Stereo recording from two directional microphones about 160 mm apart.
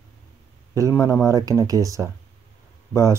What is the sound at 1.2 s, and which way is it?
Speech, 20° right (ahead or behind).